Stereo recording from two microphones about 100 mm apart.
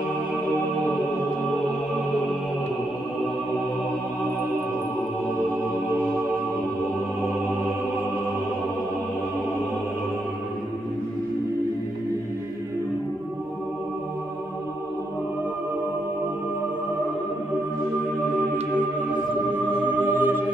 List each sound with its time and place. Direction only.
20.1 s music: 20° right (ahead or behind)